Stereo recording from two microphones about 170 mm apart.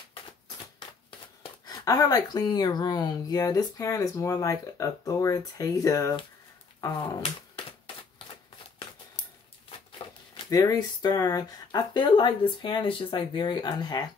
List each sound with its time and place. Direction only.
1.7 s speech: 20° left (ahead or behind)
9.9 s speech: 30° left (ahead or behind)